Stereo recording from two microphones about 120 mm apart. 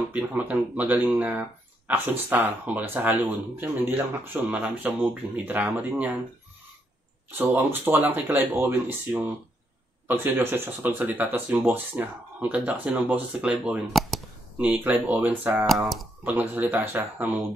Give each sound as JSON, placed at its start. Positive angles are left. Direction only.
{"t": 0.1, "sound": "speech", "side_deg": -15}
{"t": 7.2, "sound": "speech", "side_deg": -15}
{"t": 10.0, "sound": "speech", "side_deg": -20}
{"t": 15.6, "sound": "speech", "side_deg": 0}
{"t": 16.3, "sound": "speech", "side_deg": -15}